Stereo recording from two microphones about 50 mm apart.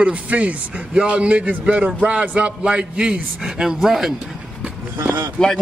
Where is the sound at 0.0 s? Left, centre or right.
Right; by 4.1 s centre.